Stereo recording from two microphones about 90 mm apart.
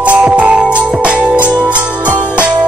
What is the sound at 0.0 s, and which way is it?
Music, 15° right (ahead or behind).